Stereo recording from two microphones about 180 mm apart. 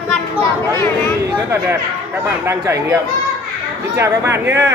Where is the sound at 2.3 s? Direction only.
15° right (ahead or behind).